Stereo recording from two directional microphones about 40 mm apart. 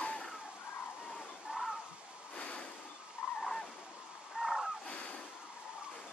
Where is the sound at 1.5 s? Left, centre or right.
Right.